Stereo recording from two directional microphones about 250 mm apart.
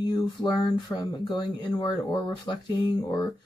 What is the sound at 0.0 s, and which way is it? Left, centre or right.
Speech, centre.